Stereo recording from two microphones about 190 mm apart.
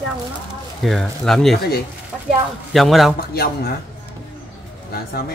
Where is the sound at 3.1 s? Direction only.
55° left (ahead or behind).